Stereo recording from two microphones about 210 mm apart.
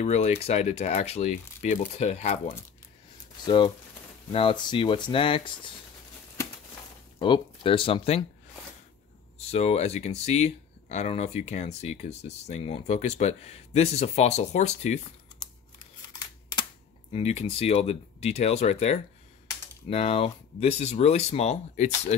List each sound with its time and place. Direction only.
0.0 s speech: 30° left (ahead or behind)
7.2 s speech: 25° left (ahead or behind)
9.5 s speech: 30° left (ahead or behind)
16.1 s computer keyboard: 20° left (ahead or behind)
17.1 s speech: 30° left (ahead or behind)